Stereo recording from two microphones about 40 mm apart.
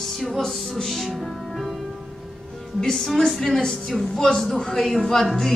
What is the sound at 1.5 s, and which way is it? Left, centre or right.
Music, centre.